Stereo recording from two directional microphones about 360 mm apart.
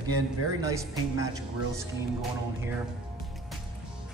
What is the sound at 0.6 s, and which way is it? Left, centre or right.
Speech, centre.